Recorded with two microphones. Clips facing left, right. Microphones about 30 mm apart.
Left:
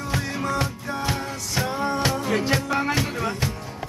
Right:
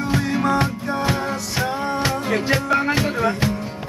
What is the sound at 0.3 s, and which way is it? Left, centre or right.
Music, right.